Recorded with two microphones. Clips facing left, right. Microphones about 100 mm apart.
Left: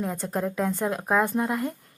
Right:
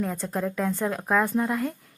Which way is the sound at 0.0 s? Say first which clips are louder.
Even; 10° left (ahead or behind).